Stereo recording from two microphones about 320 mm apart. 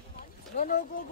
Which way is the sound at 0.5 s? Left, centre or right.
Left.